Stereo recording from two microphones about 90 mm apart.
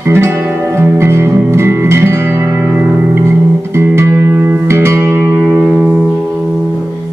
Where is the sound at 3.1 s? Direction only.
25° right (ahead or behind).